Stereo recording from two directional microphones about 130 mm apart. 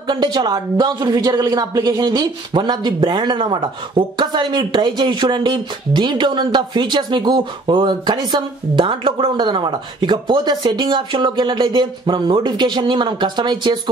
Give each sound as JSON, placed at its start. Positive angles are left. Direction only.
{"t": 0.1, "sound": "a woman's voice", "side_deg": -35}